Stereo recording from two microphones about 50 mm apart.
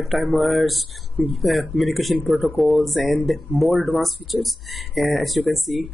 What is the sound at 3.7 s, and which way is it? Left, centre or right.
Speech, centre.